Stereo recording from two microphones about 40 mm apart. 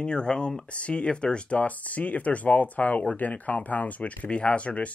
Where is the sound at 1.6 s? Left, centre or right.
Left.